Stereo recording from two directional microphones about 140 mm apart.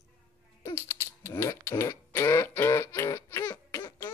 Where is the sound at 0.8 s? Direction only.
20° left (ahead or behind).